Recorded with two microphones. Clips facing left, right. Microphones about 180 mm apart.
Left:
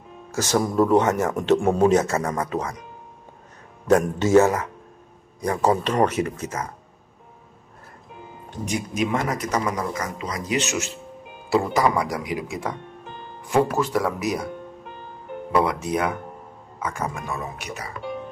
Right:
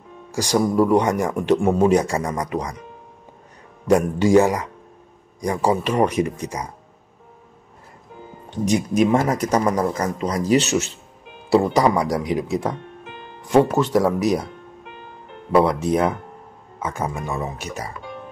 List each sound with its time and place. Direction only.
0.3 s speech: 15° right (ahead or behind)
3.8 s speech: 10° right (ahead or behind)
8.6 s a man's voice: 40° right (ahead or behind)
15.5 s speech: 30° right (ahead or behind)
16.8 s speech: 20° right (ahead or behind)
17.3 s a man's voice: 35° right (ahead or behind)